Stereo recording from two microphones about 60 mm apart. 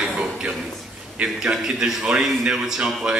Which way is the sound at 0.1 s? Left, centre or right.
Centre.